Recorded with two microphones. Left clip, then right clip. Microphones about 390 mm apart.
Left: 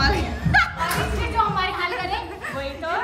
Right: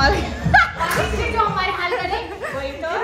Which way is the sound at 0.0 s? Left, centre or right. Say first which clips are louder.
Right 4 dB; centre.